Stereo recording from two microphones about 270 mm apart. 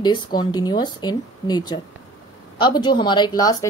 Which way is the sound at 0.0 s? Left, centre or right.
Centre.